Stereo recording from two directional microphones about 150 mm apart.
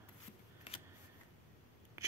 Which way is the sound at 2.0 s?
20° right (ahead or behind).